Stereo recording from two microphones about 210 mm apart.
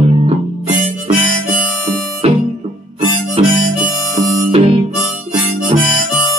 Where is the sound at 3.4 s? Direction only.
30° right (ahead or behind).